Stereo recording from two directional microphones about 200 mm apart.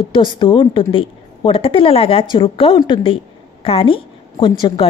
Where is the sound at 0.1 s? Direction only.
25° left (ahead or behind).